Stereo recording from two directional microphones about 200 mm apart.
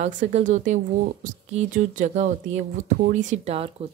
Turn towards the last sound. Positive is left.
turn(degrees=-30)  # may be behind; listen again after turning